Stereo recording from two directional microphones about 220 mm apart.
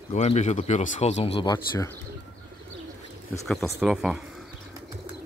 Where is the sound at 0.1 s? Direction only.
30° left (ahead or behind).